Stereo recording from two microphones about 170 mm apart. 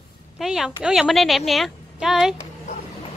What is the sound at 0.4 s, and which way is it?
A woman's voice, 5° right (ahead or behind).